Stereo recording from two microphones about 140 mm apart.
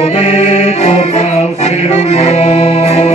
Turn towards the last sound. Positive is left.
turn(degrees=45)  # may be behind; listen again after turning